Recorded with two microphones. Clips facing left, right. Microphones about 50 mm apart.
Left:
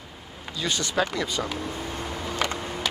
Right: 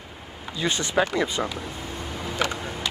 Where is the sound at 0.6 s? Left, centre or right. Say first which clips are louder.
Right 2 dB; right.